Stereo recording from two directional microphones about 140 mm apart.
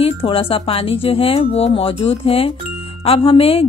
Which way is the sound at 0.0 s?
40° left (ahead or behind).